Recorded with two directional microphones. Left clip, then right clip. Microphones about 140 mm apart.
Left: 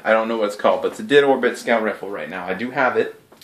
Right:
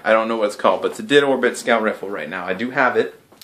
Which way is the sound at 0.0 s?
10° right (ahead or behind).